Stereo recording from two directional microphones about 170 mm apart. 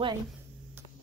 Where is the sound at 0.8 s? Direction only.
10° right (ahead or behind).